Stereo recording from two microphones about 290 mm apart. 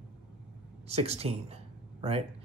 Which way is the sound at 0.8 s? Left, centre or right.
Right.